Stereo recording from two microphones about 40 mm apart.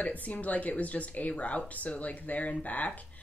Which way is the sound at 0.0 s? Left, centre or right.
Left.